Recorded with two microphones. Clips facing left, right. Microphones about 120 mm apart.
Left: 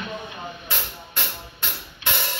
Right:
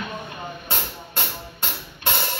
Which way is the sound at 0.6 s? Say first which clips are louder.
Right 2 dB; 35° right (ahead or behind).